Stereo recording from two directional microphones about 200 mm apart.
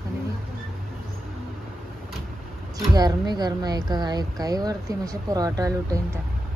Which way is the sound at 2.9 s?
20° right (ahead or behind).